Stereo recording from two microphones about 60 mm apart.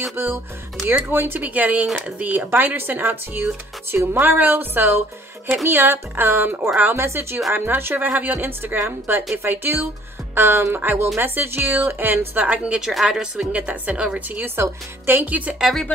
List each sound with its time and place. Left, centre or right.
0.1 s a woman's voice: right
12.6 s a woman's voice: centre
13.5 s a woman's voice: right
14.4 s a woman's voice: right